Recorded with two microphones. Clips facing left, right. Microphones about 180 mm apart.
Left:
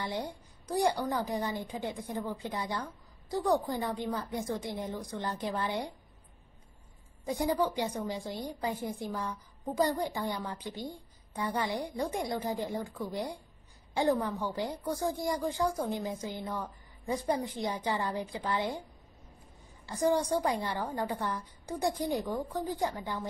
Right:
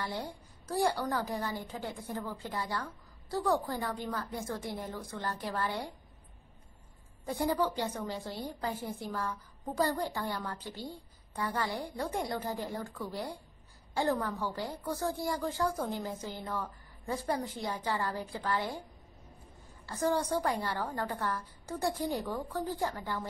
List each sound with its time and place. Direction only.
0.0 s a woman's voice: 20° left (ahead or behind)
7.2 s a woman's voice: 15° left (ahead or behind)
19.9 s a woman's voice: 15° left (ahead or behind)